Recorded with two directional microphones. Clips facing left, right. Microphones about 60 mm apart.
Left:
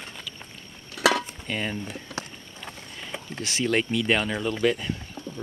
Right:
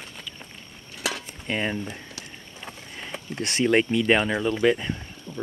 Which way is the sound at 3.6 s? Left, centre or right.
Centre.